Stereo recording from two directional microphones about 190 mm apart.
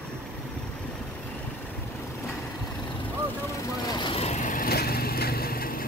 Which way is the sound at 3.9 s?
30° left (ahead or behind).